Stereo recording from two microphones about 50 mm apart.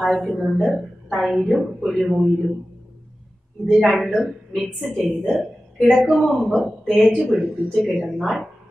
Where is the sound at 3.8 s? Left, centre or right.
Centre.